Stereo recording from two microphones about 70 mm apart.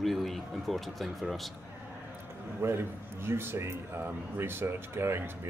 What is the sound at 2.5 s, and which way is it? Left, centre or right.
A man's voice, right.